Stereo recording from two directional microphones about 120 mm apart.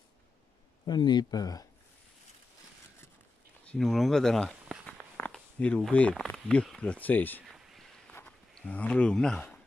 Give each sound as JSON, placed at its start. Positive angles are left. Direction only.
{"t": 0.8, "sound": "speech", "side_deg": 35}
{"t": 3.7, "sound": "speech", "side_deg": 0}
{"t": 4.7, "sound": "walk", "side_deg": 0}
{"t": 5.1, "sound": "speech", "side_deg": 10}
{"t": 7.5, "sound": "a sound", "side_deg": -5}
{"t": 8.5, "sound": "speech", "side_deg": 10}